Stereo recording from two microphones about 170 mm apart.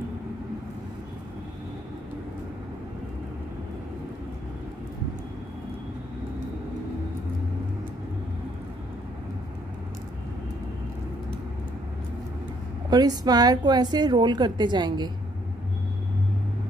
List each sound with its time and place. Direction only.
12.9 s a woman's voice: 25° right (ahead or behind)